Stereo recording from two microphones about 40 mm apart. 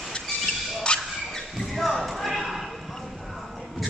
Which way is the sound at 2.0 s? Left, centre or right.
Centre.